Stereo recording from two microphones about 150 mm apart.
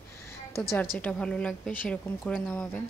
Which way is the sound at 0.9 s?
5° left (ahead or behind).